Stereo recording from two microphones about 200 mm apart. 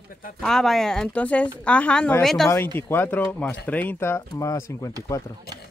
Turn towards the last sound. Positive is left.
turn(degrees=15)  # may be behind; listen again after turning